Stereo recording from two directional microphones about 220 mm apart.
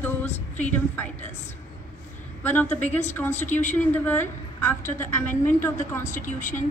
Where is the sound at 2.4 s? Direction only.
10° left (ahead or behind).